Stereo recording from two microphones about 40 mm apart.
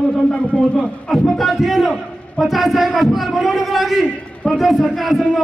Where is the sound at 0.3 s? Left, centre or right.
Left.